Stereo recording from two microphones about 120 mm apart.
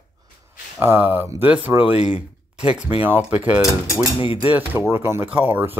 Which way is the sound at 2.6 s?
10° right (ahead or behind).